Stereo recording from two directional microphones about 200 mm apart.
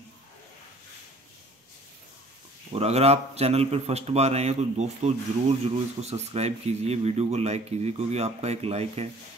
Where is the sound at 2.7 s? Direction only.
30° right (ahead or behind).